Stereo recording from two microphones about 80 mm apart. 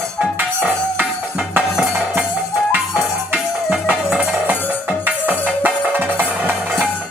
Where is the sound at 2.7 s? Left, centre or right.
Centre.